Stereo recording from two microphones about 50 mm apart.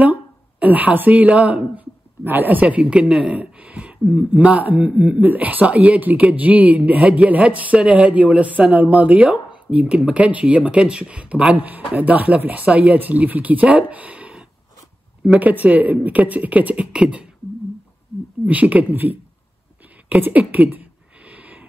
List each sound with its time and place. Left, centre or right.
0.0 s a woman's voice: right
2.2 s speech: right
2.6 s speech: right
18.4 s speech: right
20.1 s speech: right
21.3 s a sound: right